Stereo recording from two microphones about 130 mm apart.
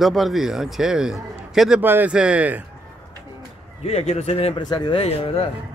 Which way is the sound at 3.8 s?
55° left (ahead or behind).